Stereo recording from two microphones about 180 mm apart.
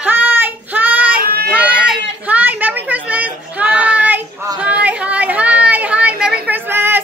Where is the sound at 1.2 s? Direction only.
60° right (ahead or behind).